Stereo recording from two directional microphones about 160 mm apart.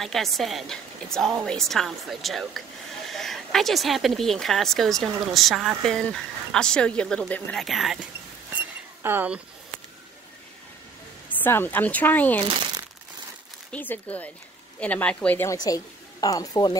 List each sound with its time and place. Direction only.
0.0 s speech: centre (ahead or behind)
8.5 s a sound: 10° right (ahead or behind)
11.2 s speech: 10° left (ahead or behind)
13.7 s a woman's voice: 10° left (ahead or behind)